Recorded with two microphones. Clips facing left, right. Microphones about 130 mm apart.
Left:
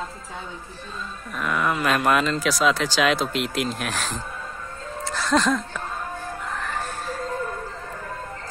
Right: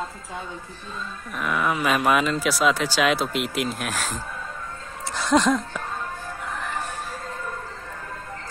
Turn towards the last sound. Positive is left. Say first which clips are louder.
# left 1 dB
turn(degrees=-10)  # may be behind; listen again after turning